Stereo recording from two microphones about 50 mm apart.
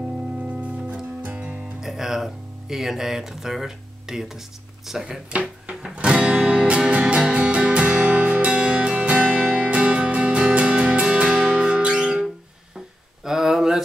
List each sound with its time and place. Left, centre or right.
0.4 s music: right
1.8 s speech: centre
5.3 s music: right
13.2 s a sound: centre